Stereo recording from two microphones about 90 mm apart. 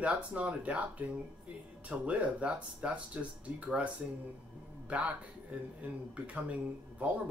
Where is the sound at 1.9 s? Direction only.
15° right (ahead or behind).